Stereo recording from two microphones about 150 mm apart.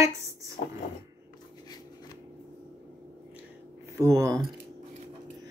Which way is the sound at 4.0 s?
20° right (ahead or behind).